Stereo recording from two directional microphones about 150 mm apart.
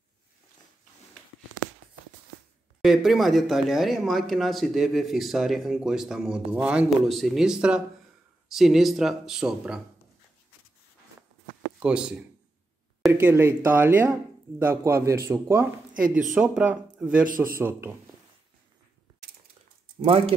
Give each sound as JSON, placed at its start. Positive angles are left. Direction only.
{"t": 2.8, "sound": "speech", "side_deg": -5}
{"t": 11.8, "sound": "speech", "side_deg": -5}
{"t": 15.9, "sound": "speech", "side_deg": -60}
{"t": 16.3, "sound": "speech", "side_deg": -5}
{"t": 17.2, "sound": "a man's voice", "side_deg": -70}
{"t": 17.6, "sound": "speech", "side_deg": -15}
{"t": 20.0, "sound": "speech", "side_deg": -40}